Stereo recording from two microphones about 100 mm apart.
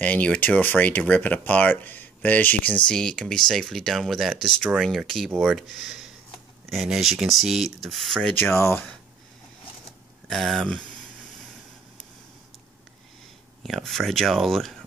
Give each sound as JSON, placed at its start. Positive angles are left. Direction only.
{"t": 0.0, "sound": "speech", "side_deg": 15}
{"t": 8.4, "sound": "speech", "side_deg": 25}
{"t": 10.2, "sound": "speech", "side_deg": 0}
{"t": 13.6, "sound": "speech", "side_deg": 0}